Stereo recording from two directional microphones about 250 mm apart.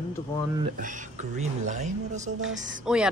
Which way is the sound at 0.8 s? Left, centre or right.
Right.